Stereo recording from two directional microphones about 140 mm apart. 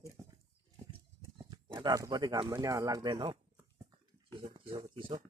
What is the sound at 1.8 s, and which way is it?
Speech, 30° right (ahead or behind).